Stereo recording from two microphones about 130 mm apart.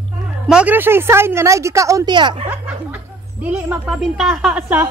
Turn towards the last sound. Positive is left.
turn(degrees=-10)  # may be behind; listen again after turning